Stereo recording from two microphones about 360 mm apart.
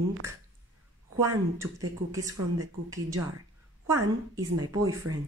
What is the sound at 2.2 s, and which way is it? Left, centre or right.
Speech, right.